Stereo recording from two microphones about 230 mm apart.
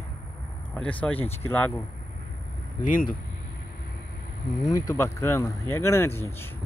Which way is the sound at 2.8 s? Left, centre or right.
Left.